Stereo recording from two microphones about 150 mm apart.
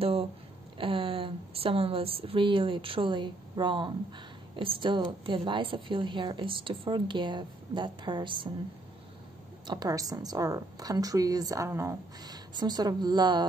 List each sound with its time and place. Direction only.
0.7 s a woman's voice: 35° right (ahead or behind)
9.7 s a woman's voice: 25° right (ahead or behind)